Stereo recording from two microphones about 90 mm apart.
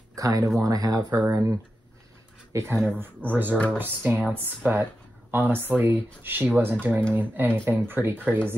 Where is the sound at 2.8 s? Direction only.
25° right (ahead or behind).